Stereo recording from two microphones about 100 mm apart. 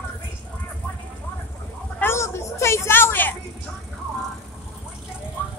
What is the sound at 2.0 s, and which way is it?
A woman's voice, 25° left (ahead or behind).